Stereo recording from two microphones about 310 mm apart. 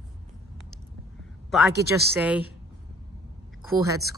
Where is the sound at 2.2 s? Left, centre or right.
Centre.